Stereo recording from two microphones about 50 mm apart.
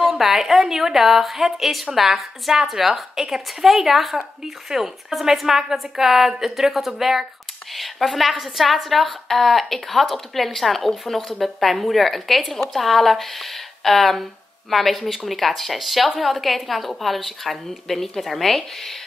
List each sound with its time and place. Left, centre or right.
0.0 s a woman's voice: centre